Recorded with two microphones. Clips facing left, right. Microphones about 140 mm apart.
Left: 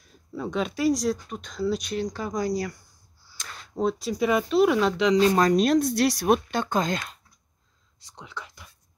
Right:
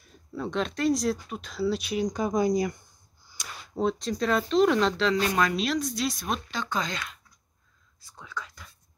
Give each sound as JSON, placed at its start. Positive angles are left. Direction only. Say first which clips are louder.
{"t": 0.0, "sound": "speech", "louder": "left 1 dB", "side_deg": 0}
{"t": 2.0, "sound": "speech", "louder": "right 6 dB", "side_deg": -20}
{"t": 3.3, "sound": "a sound", "louder": "even", "side_deg": -10}
{"t": 3.7, "sound": "speech", "louder": "left 1 dB", "side_deg": 5}
{"t": 5.2, "sound": "speech", "louder": "left 6 dB", "side_deg": 35}
{"t": 8.1, "sound": "speech", "louder": "right 1 dB", "side_deg": 20}